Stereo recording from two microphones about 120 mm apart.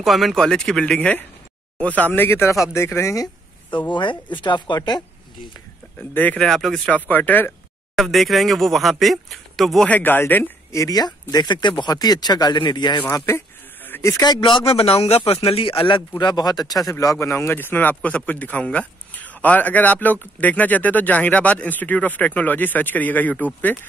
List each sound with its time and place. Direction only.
0.0 s speech: centre (ahead or behind); by 3.3 s 25° left (ahead or behind)
3.9 s speech: 40° left (ahead or behind)
5.9 s speech: 15° left (ahead or behind)
7.1 s a sound: 15° left (ahead or behind)
8.0 s speech: centre (ahead or behind)
9.8 s speech: 15° left (ahead or behind)
10.8 s speech: 35° left (ahead or behind)
13.1 s speech: 20° left (ahead or behind)
13.8 s a sound: 15° left (ahead or behind)
14.1 s speech: 35° left (ahead or behind)
14.7 s a man's voice: 55° left (ahead or behind)
16.2 s speech: 35° left (ahead or behind); by 23.8 s 15° left (ahead or behind)